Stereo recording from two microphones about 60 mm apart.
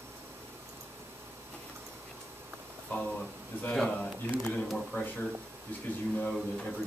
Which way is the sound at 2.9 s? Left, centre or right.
Left.